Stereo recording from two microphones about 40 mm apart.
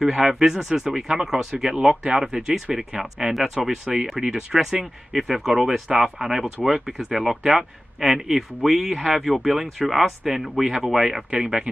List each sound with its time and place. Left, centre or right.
0.0 s speech: centre
1.2 s speech: centre
5.9 s speech: centre